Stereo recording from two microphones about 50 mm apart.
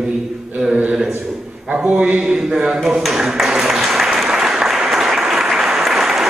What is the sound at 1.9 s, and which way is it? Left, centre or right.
Speech, right.